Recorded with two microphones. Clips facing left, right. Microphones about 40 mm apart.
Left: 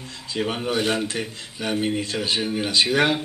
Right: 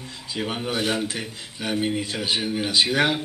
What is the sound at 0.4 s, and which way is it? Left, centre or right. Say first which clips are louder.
Speech: left 2 dB; centre.